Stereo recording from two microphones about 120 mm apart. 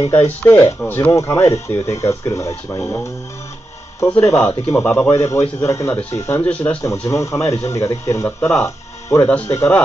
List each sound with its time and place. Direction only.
0.4 s speech: 20° left (ahead or behind)
4.1 s speech: 20° left (ahead or behind)
4.8 s speech: 10° left (ahead or behind)
5.1 s speech: 20° left (ahead or behind)